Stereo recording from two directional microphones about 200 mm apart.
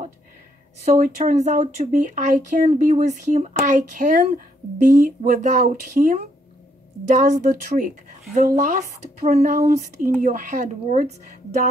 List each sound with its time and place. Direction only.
0.9 s speech: 40° right (ahead or behind)